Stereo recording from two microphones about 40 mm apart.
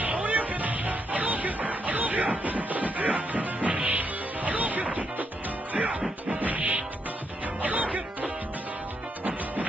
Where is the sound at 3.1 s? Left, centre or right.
Right.